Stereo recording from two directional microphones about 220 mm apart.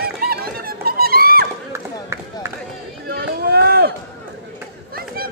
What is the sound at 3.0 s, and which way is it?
Run, 45° right (ahead or behind).